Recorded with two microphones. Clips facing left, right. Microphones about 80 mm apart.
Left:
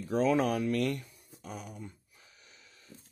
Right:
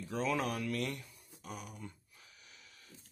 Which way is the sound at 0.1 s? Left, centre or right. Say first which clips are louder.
Left 8 dB; left.